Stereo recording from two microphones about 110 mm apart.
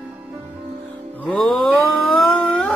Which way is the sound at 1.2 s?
5° left (ahead or behind).